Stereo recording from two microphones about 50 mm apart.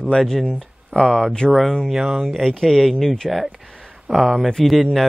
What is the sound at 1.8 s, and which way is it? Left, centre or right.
Speech, centre.